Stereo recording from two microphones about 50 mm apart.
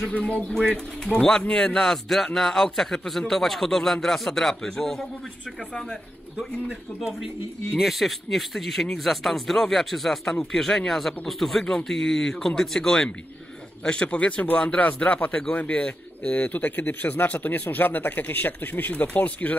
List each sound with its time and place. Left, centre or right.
0.1 s speech: left
7.7 s speech: centre
11.6 s speech: centre
13.8 s speech: left